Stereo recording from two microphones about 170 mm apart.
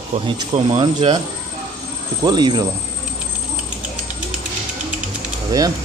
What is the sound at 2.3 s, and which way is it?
Speech, 25° right (ahead or behind).